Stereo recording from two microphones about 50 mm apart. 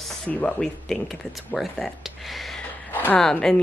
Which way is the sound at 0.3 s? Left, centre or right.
Left.